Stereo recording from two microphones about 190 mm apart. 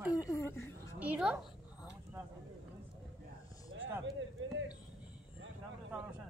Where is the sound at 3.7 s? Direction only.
80° right.